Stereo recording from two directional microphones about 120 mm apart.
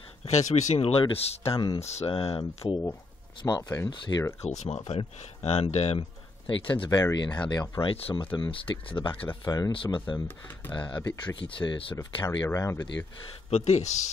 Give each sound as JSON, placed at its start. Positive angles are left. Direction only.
{"t": 0.2, "sound": "speech", "side_deg": 75}
{"t": 1.4, "sound": "speech", "side_deg": 30}
{"t": 1.8, "sound": "speech", "side_deg": 65}
{"t": 3.4, "sound": "speech", "side_deg": 35}
{"t": 4.4, "sound": "speech", "side_deg": 65}
{"t": 6.4, "sound": "speech", "side_deg": 45}
{"t": 7.8, "sound": "speech", "side_deg": 45}
{"t": 9.4, "sound": "speech", "side_deg": 30}
{"t": 9.7, "sound": "speech", "side_deg": 45}
{"t": 10.2, "sound": "speech", "side_deg": 15}
{"t": 11.2, "sound": "speech", "side_deg": 45}
{"t": 12.0, "sound": "speech", "side_deg": 30}
{"t": 13.5, "sound": "speech", "side_deg": 65}